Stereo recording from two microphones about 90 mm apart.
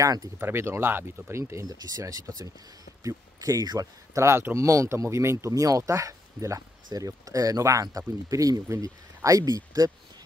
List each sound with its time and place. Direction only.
0.0 s speech: 40° right (ahead or behind)
0.4 s speech: 25° right (ahead or behind)
1.8 s speech: 45° right (ahead or behind)
4.1 s speech: 30° right (ahead or behind)